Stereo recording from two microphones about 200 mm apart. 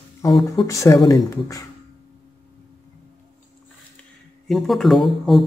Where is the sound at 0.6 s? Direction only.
15° left (ahead or behind).